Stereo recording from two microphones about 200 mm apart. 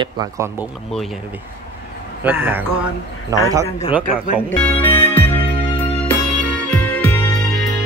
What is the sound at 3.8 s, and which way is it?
Speech, 30° left (ahead or behind).